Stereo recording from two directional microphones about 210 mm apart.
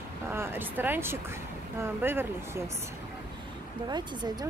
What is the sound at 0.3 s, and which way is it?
Speech, 10° right (ahead or behind).